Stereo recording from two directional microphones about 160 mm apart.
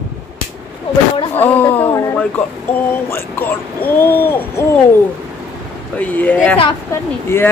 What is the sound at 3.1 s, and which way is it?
Speech, 10° left (ahead or behind).